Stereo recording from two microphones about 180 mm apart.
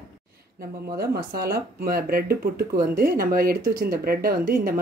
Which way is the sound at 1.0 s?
60° right (ahead or behind).